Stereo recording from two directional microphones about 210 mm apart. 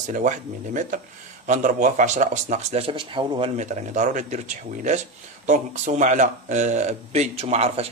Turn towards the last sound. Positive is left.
turn(degrees=-30)  # may be behind; listen again after turning